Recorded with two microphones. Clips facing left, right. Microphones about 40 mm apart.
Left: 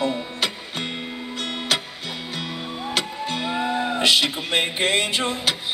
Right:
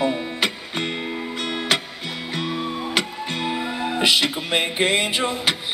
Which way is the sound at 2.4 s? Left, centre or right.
Centre.